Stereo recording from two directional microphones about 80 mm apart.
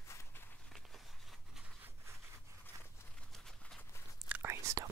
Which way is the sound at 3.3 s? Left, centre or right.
Centre.